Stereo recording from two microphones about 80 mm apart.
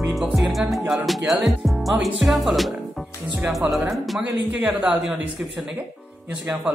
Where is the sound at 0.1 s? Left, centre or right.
Centre.